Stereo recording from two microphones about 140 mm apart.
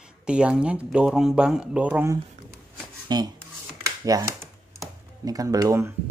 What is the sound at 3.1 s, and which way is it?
Speech, 30° right (ahead or behind).